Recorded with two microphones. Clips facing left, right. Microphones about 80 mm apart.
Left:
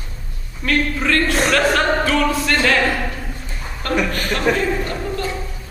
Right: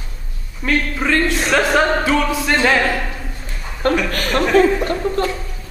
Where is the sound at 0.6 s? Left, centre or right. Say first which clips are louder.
Even; centre.